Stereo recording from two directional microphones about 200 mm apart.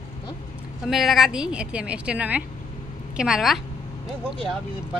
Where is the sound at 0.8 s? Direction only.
Centre (ahead or behind).